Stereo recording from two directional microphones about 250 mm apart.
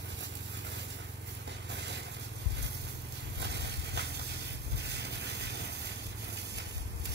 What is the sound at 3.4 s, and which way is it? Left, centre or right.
Vehicle, right.